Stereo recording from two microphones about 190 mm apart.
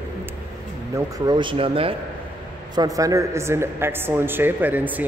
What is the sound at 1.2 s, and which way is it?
Speech, 25° right (ahead or behind).